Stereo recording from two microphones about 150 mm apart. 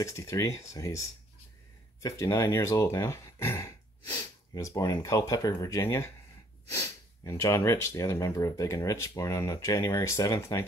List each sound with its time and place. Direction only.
0.0 s speech: 20° left (ahead or behind)